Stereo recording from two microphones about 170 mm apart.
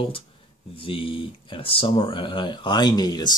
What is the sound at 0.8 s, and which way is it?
Speech, 30° left (ahead or behind).